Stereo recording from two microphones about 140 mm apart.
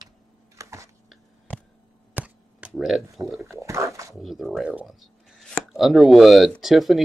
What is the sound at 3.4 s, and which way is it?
Dog, 20° right (ahead or behind).